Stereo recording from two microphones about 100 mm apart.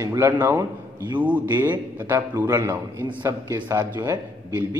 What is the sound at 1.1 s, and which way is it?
A man's voice, 15° right (ahead or behind).